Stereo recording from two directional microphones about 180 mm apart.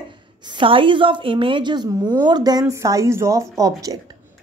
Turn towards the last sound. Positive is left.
turn(degrees=-20)  # may be behind; listen again after turning